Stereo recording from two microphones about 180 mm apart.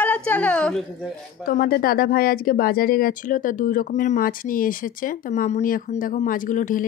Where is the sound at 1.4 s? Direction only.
55° left (ahead or behind).